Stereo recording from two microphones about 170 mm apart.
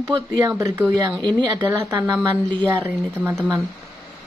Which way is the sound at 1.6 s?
15° right (ahead or behind).